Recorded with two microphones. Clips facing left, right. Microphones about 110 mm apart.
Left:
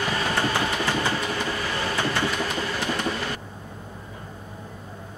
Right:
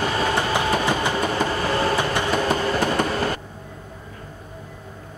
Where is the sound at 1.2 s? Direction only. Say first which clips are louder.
Right 5 dB; 45° right (ahead or behind).